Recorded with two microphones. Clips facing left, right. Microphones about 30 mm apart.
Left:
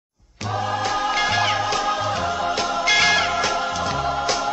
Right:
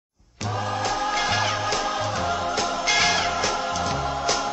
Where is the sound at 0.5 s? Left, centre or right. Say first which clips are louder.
Left 3 dB; centre.